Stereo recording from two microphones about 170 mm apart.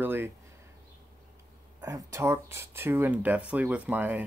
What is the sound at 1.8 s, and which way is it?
Speech, 20° right (ahead or behind).